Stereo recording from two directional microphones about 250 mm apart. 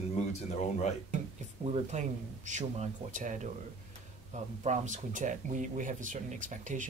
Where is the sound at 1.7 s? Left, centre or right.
Right.